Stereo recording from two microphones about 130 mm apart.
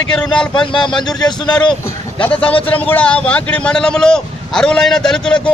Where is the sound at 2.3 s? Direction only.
45° left (ahead or behind).